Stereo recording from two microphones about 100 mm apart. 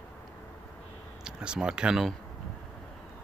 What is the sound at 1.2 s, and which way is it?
Speech, 10° right (ahead or behind).